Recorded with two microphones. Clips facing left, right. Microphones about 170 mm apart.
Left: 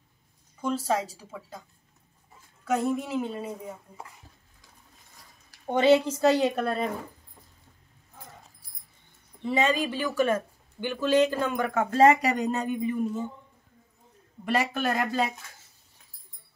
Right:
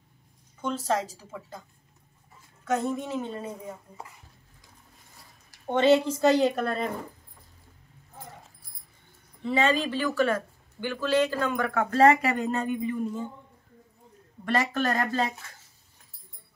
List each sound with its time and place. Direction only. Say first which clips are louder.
0.6 s a woman's voice: left 1 dB; 5° left (ahead or behind)
2.6 s a woman's voice: left 1 dB; 5° left (ahead or behind)
5.5 s a woman's voice: even; 10° left (ahead or behind)
9.4 s speech: even; 15° left (ahead or behind)
14.4 s speech: even; 10° left (ahead or behind)